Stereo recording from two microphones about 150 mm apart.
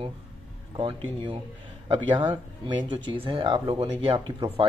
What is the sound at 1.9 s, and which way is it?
Speech, 30° right (ahead or behind).